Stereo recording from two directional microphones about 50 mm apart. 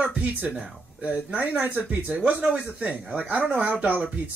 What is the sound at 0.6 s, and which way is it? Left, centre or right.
Speech, right.